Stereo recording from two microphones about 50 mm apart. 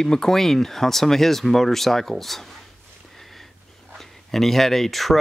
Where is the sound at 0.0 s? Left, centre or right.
Centre.